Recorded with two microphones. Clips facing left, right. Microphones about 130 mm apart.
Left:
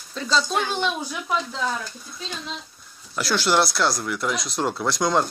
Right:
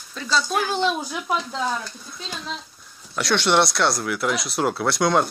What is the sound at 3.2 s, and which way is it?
Speech, centre (ahead or behind).